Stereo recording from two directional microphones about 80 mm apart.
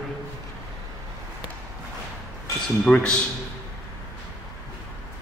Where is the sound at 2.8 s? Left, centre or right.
Centre.